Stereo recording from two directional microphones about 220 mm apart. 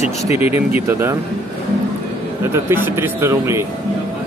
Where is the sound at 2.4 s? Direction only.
10° right (ahead or behind).